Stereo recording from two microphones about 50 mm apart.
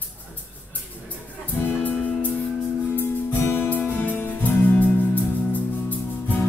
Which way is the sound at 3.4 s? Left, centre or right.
Left.